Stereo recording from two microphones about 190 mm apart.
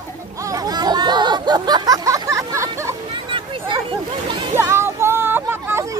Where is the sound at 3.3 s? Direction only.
25° right (ahead or behind).